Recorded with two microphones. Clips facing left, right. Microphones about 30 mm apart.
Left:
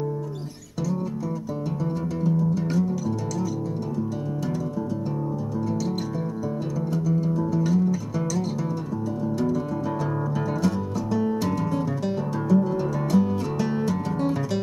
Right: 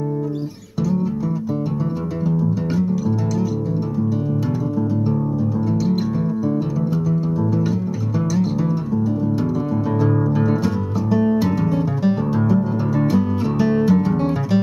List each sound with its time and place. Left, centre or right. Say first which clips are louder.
2.2 s music: right 3 dB; right
7.1 s music: right 4 dB; right
10.6 s music: right 4 dB; centre